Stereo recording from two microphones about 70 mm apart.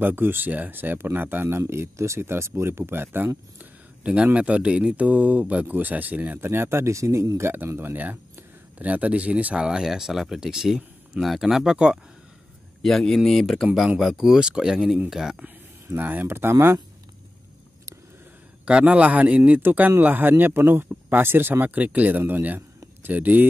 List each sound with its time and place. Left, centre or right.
0.0 s speech: right
1.6 s speech: right
3.5 s speech: centre
12.8 s speech: centre
15.9 s speech: right
18.7 s speech: centre